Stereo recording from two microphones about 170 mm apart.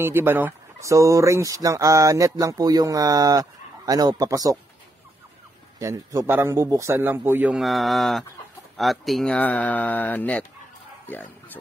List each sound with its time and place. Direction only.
0.0 s speech: 10° right (ahead or behind)
5.8 s a man's voice: 15° right (ahead or behind); by 10.4 s 10° left (ahead or behind)
11.1 s a sound: 10° left (ahead or behind)